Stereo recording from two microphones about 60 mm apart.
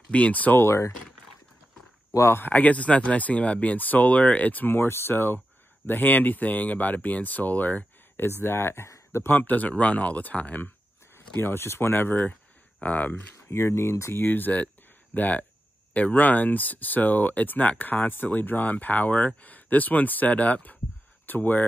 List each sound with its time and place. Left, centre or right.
0.1 s speech: left
0.6 s speech: left
2.3 s speech: left
8.5 s speech: left
9.3 s speech: left
11.1 s speech: left
13.5 s speech: left
14.2 s speech: left